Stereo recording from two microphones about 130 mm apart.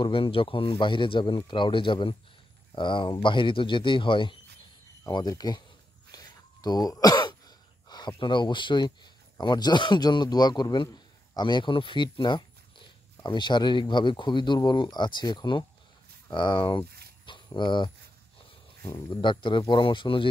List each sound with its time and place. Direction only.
0.0 s speech: 45° left (ahead or behind)
5.0 s speech: 30° left (ahead or behind)
6.1 s throat clearing: 30° left (ahead or behind)
8.2 s speech: 40° left (ahead or behind)